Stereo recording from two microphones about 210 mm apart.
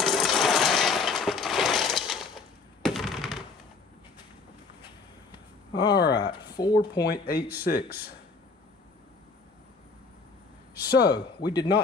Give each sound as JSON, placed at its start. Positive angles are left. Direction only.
{"t": 0.0, "sound": "a sound", "side_deg": 0}
{"t": 2.8, "sound": "typing", "side_deg": 0}
{"t": 6.0, "sound": "speech", "side_deg": 20}
{"t": 7.1, "sound": "speech", "side_deg": 45}
{"t": 10.9, "sound": "speech", "side_deg": 50}
{"t": 11.1, "sound": "speech", "side_deg": 20}